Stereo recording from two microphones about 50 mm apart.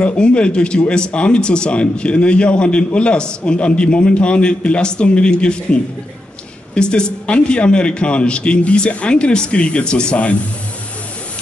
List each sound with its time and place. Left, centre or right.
0.2 s speech: left